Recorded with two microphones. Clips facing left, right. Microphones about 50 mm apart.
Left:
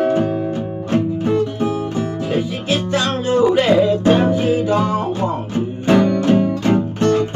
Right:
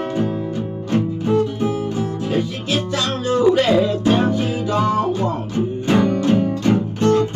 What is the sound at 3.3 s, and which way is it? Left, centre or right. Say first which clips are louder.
Music: left 1 dB; centre.